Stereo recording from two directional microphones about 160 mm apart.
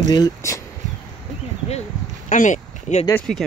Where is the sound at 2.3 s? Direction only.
50° left (ahead or behind).